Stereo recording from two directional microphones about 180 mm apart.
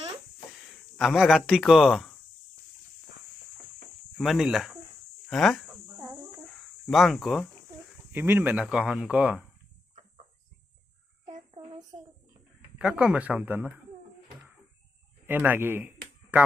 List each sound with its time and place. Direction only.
0.9 s speech: centre (ahead or behind)
4.2 s speech: centre (ahead or behind)
6.9 s speech: centre (ahead or behind)
8.1 s speech: 10° right (ahead or behind)
11.2 s child singing: 40° right (ahead or behind)
12.7 s speech: 5° right (ahead or behind)
15.2 s speech: 10° right (ahead or behind)